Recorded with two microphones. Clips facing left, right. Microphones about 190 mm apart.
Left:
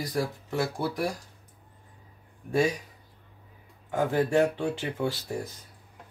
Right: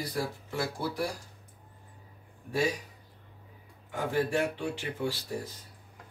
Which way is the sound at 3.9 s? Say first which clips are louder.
Left 5 dB; 45° left (ahead or behind).